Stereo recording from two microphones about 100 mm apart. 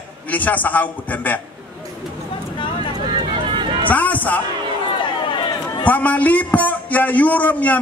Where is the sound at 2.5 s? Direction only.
55° left (ahead or behind).